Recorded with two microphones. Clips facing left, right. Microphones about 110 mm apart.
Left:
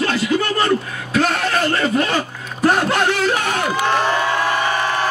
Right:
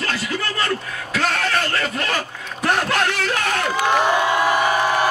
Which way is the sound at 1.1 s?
25° left (ahead or behind).